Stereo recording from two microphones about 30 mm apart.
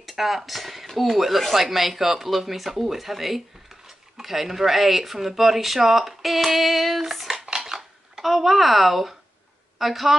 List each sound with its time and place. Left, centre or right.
0.0 s speech: centre
0.8 s speech: centre
1.1 s speech: centre
7.4 s dishes: centre
8.2 s speech: centre